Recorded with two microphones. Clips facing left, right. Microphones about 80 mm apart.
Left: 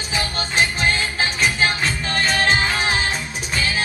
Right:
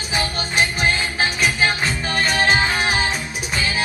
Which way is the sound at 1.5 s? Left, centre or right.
Right.